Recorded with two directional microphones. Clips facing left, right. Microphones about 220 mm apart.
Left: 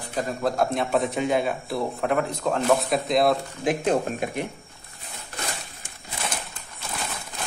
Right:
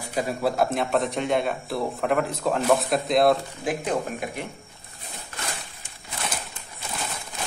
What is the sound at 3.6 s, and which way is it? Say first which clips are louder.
Speech: left 3 dB; 25° left (ahead or behind).